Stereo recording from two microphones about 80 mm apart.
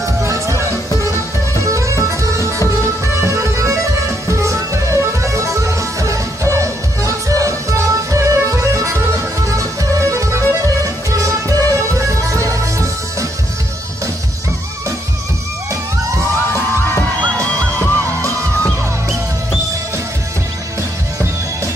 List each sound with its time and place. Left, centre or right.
0.0 s music: right
17.7 s music: left